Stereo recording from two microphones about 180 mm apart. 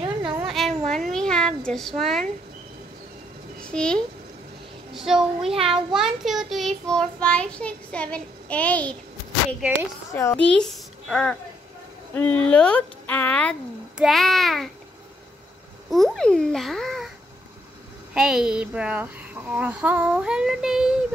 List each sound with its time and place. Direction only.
0.0 s a sound: 25° right (ahead or behind)
0.5 s a sound: centre (ahead or behind)
3.6 s a woman's voice: 5° left (ahead or behind)
5.6 s a child's voice: 25° right (ahead or behind)
5.9 s child singing: centre (ahead or behind)
10.1 s a child's voice: 10° left (ahead or behind)
12.2 s child singing: 5° left (ahead or behind)
13.9 s speech: centre (ahead or behind)
15.9 s a child's voice: centre (ahead or behind)
18.1 s speech: 5° right (ahead or behind)